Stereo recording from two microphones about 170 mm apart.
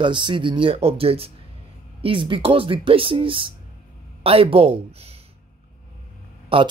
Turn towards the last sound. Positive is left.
turn(degrees=-30)  # may be behind; listen again after turning